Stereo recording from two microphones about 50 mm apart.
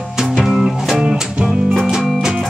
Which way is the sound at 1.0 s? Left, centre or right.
Centre.